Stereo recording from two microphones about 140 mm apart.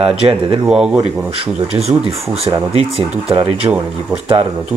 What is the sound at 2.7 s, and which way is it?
Speech, 40° right (ahead or behind).